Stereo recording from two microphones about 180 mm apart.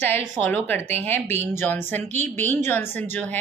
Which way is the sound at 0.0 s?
10° left (ahead or behind).